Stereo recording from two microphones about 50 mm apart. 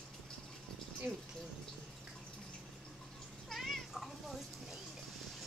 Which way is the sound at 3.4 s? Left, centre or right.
Centre.